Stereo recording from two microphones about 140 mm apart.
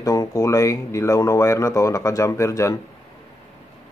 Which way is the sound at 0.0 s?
25° left (ahead or behind).